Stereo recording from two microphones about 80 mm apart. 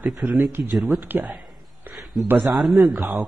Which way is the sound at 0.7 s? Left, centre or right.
Centre.